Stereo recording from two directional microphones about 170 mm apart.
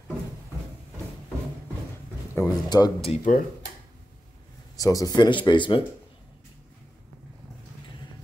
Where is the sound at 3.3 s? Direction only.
50° left (ahead or behind).